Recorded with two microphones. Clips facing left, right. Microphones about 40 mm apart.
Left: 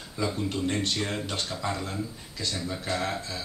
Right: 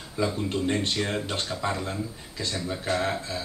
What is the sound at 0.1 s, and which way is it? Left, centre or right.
Speech, centre.